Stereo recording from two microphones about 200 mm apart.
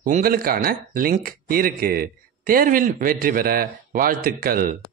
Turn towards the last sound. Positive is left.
turn(degrees=-45)  # may be behind; listen again after turning